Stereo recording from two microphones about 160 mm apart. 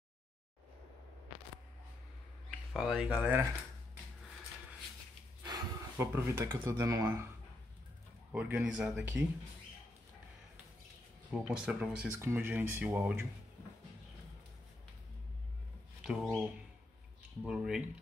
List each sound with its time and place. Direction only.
2.7 s speech: 5° right (ahead or behind)
5.4 s a sound: 25° right (ahead or behind)
6.1 s speech: 15° right (ahead or behind)
8.3 s speech: 10° right (ahead or behind)
11.3 s speech: 5° right (ahead or behind)
16.0 s speech: centre (ahead or behind)
17.4 s speech: 5° right (ahead or behind)